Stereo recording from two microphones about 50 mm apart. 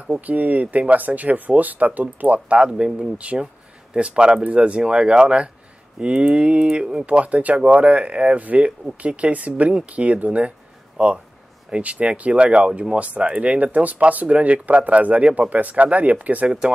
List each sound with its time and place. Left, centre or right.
0.0 s speech: right
2.5 s speech: centre
7.1 s speech: right